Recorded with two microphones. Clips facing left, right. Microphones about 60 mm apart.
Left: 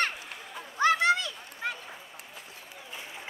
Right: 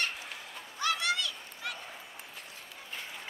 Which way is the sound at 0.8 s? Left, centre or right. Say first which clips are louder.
Left 8 dB; left.